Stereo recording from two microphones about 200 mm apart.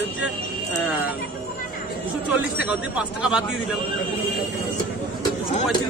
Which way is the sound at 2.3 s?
5° right (ahead or behind).